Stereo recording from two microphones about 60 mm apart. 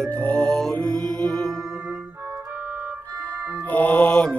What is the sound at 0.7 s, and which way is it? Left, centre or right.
Music, centre.